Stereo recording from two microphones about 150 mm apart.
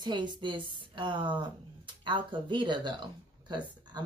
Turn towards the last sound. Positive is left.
turn(degrees=-30)  # may be behind; listen again after turning